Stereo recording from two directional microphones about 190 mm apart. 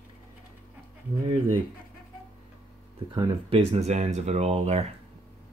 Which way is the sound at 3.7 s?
35° right (ahead or behind).